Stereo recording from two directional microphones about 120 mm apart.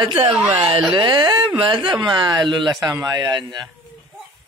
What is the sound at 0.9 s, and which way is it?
Speech, 40° right (ahead or behind).